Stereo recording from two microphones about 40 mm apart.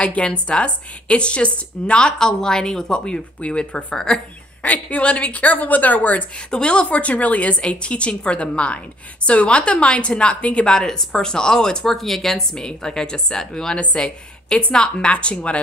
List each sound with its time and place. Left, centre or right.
0.0 s a woman's voice: left
3.3 s a woman's voice: left
4.6 s a woman's voice: left
6.5 s a woman's voice: left
10.7 s a woman's voice: centre; by 15.6 s left